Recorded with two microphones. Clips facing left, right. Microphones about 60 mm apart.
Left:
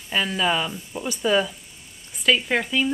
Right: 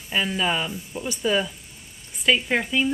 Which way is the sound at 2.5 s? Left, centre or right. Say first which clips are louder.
Even; centre.